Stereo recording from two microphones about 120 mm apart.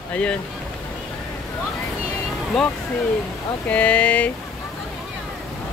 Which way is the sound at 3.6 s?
10° left (ahead or behind).